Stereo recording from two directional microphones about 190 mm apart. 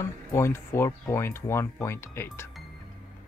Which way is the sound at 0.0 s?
15° left (ahead or behind).